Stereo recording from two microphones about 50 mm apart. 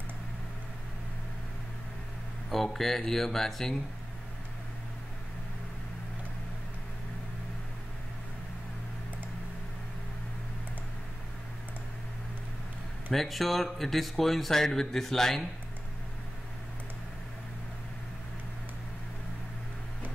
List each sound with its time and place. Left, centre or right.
2.5 s speech: centre
13.1 s speech: centre